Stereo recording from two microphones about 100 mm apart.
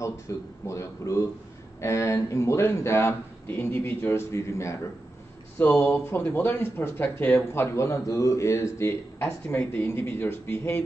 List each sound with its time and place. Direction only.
0.3 s speech: 30° left (ahead or behind)